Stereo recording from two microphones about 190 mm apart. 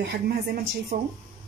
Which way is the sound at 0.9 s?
35° right (ahead or behind).